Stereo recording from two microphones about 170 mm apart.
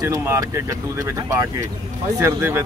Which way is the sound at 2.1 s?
15° right (ahead or behind).